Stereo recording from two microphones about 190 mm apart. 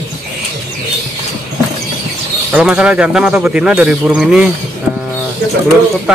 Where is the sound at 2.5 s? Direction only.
5° right (ahead or behind).